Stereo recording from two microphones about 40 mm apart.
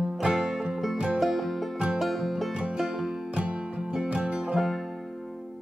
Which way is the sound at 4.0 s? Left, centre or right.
Centre.